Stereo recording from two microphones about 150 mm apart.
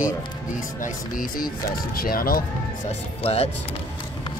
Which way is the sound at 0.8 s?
65° left (ahead or behind).